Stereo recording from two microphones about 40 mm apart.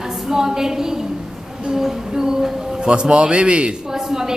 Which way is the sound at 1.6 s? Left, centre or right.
Centre.